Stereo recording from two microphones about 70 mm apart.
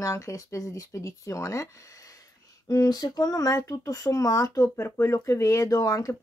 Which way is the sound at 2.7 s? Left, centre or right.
Left.